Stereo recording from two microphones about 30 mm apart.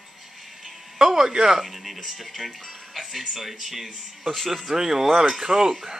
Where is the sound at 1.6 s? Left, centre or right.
Centre.